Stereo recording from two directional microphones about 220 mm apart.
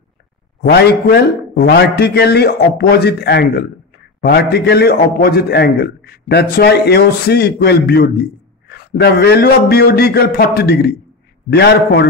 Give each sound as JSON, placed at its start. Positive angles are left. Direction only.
{"t": 0.6, "sound": "a man's voice", "side_deg": 45}